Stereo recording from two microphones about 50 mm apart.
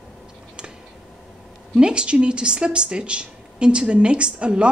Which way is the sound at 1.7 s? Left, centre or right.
Centre.